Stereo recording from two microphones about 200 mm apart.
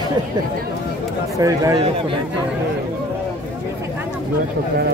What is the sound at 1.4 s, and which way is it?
Speech, 15° right (ahead or behind).